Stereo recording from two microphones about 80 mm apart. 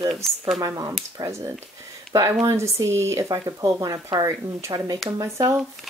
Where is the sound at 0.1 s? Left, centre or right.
Centre.